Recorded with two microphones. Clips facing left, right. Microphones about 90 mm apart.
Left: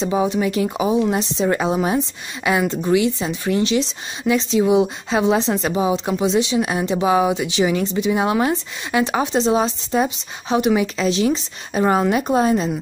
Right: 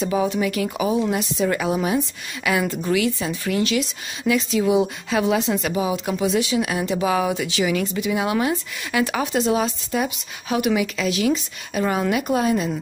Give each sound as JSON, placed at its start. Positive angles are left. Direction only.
{"t": 0.0, "sound": "speech", "side_deg": 25}